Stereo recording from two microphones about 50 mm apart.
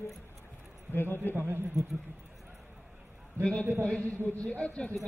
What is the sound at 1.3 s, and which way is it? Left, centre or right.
Speech, right.